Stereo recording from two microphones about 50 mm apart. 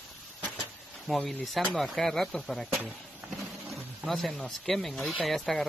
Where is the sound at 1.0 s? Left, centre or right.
Centre.